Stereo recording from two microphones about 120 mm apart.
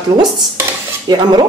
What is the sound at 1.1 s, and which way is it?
Speech, 35° right (ahead or behind).